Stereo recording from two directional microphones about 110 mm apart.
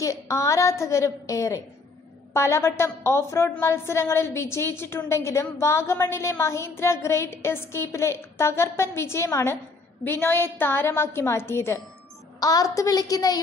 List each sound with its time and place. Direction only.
0.0 s a woman's voice: 30° left (ahead or behind)
12.4 s a woman's voice: 35° left (ahead or behind)